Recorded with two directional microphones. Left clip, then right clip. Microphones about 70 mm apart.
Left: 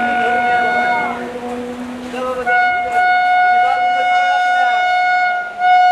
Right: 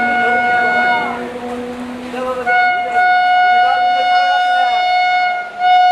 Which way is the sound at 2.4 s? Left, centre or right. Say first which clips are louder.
Right 1 dB; centre.